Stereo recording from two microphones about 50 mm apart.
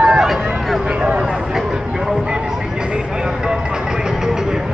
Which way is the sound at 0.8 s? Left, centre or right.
Centre.